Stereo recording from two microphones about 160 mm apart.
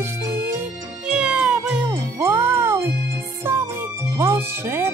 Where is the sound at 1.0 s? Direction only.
5° right (ahead or behind).